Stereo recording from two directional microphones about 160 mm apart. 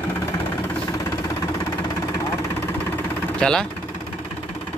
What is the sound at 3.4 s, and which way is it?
Speech, 5° left (ahead or behind).